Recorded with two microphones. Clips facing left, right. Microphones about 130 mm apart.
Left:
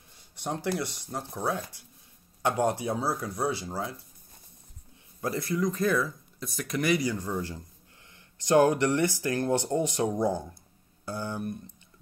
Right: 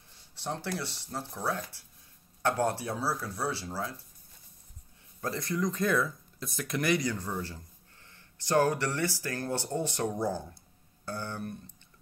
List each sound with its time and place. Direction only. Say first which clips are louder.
0.1 s speech: left 3 dB; 15° left (ahead or behind)
5.2 s speech: left 3 dB; 10° left (ahead or behind)